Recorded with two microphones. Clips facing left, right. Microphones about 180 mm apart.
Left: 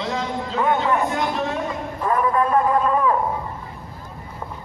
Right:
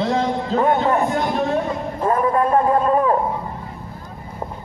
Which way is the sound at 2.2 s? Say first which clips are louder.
Right 1 dB; 30° right (ahead or behind).